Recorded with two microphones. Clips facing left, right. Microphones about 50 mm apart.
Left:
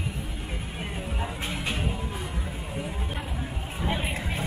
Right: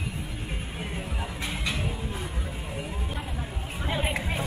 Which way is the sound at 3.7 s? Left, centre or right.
Centre.